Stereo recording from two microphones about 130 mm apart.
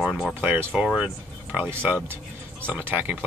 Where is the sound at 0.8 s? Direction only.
Centre (ahead or behind).